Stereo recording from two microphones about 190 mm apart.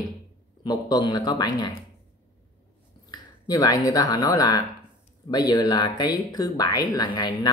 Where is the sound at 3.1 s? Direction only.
20° left (ahead or behind).